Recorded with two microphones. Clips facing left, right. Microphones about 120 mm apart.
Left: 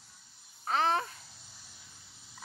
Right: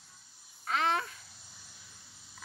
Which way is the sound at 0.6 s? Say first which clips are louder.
Left 2 dB; 35° left (ahead or behind).